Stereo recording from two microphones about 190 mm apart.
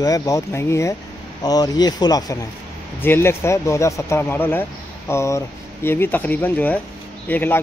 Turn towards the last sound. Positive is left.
turn(degrees=10)  # may be behind; listen again after turning